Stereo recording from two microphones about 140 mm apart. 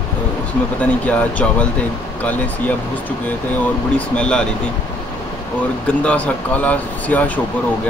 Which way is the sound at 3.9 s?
10° left (ahead or behind).